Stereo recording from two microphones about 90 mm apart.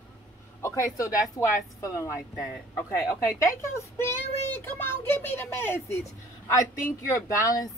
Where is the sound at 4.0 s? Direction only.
25° left (ahead or behind).